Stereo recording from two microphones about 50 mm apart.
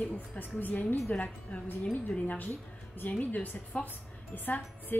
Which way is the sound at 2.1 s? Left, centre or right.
Left.